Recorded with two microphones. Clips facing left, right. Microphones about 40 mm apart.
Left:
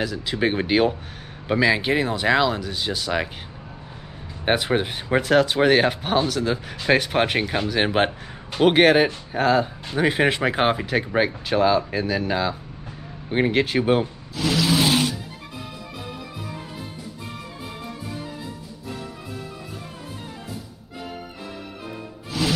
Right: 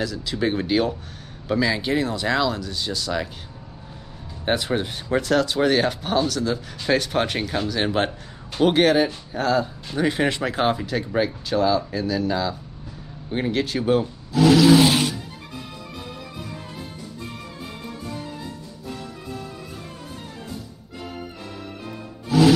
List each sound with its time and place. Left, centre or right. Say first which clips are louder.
0.0 s speech: left 1 dB; left
4.5 s speech: left 2 dB; left
14.3 s a sound: right 8 dB; centre
22.3 s music: right 9 dB; centre